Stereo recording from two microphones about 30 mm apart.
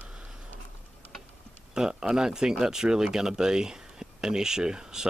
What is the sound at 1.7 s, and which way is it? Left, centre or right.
Speech, right.